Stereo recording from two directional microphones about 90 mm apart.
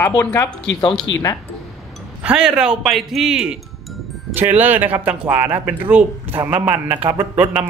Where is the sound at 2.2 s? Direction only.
10° right (ahead or behind).